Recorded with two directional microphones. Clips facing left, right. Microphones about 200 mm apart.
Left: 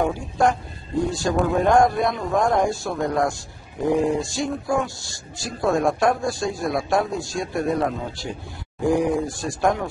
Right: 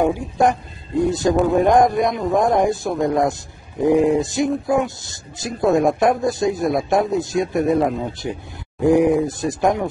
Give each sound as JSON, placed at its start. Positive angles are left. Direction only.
{"t": 0.0, "sound": "speech", "side_deg": -20}